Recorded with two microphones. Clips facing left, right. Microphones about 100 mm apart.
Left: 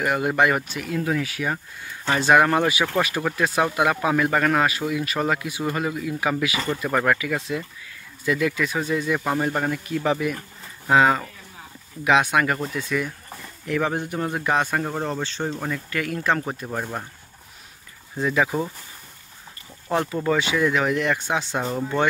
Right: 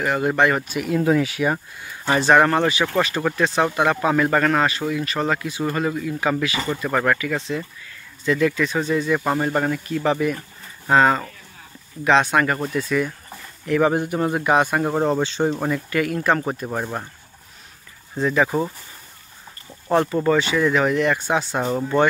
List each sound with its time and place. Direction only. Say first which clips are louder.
0.0 s speech: right 2 dB; 10° left (ahead or behind)
0.7 s a man's voice: right 6 dB; 15° right (ahead or behind)
0.9 s speech: right 6 dB; 30° right (ahead or behind)
2.0 s a man's voice: right 2 dB; centre (ahead or behind)
18.1 s speech: right 3 dB; 5° left (ahead or behind)
19.9 s speech: right 4 dB; centre (ahead or behind)